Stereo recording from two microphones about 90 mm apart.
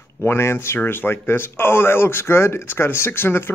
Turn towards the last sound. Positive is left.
turn(degrees=25)  # may be behind; listen again after turning